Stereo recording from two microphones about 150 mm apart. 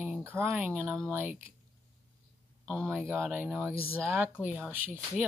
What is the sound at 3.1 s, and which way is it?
Speech, 15° right (ahead or behind).